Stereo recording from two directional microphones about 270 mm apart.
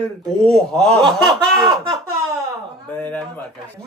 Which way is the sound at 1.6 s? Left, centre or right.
Centre.